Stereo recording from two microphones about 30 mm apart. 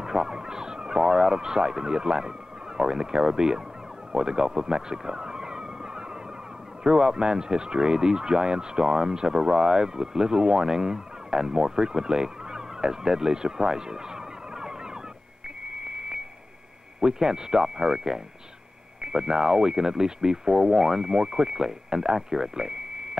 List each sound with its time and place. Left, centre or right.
0.0 s speech: right
4.1 s vehicle: right
6.8 s speech: right
11.9 s emergency vehicle: right
15.7 s a sound: right
17.0 s speech: right